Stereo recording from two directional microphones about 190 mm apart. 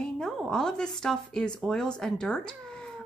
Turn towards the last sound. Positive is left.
turn(degrees=5)  # may be behind; listen again after turning